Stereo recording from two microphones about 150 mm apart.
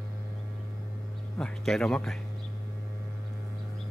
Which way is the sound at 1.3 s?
5° left (ahead or behind).